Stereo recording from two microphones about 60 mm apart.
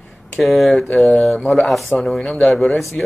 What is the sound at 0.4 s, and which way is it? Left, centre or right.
Speech, centre.